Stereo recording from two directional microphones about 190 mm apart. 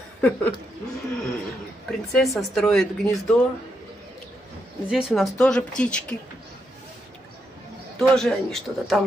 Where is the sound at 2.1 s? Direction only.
Centre (ahead or behind).